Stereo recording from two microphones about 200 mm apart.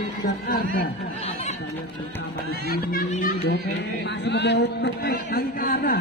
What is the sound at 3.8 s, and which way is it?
Speech, 60° left (ahead or behind).